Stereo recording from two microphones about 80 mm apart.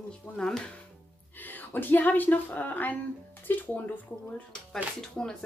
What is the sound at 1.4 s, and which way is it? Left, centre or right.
Speech, left.